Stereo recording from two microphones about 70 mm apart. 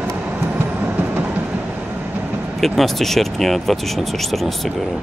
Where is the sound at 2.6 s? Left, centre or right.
Centre.